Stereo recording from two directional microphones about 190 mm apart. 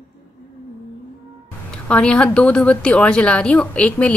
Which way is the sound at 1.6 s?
5° left (ahead or behind).